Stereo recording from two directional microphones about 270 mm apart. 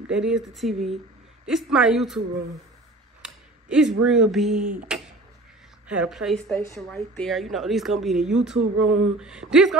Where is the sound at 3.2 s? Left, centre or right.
Centre.